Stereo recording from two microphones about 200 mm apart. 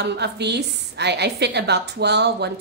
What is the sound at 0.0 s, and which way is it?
Speech, 55° right (ahead or behind).